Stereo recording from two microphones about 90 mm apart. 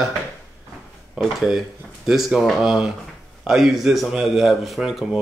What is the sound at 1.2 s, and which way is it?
Speech, centre (ahead or behind).